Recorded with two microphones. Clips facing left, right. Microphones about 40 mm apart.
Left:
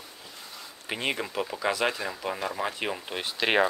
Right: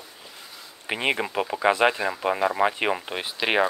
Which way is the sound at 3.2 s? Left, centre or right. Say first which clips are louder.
Right 1 dB; centre.